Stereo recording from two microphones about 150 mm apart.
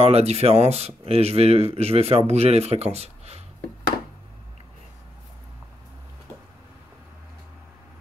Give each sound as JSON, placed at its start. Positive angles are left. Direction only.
{"t": 0.0, "sound": "speech", "side_deg": -45}